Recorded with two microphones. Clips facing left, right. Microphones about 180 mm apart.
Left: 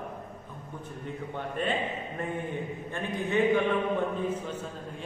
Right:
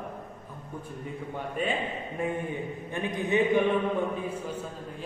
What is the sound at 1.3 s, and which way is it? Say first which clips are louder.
Speech: right 1 dB; 5° right (ahead or behind).